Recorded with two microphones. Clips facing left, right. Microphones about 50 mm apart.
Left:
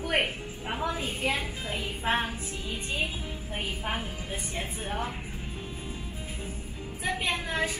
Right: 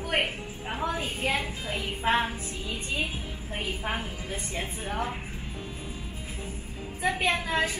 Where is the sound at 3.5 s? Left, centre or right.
Right.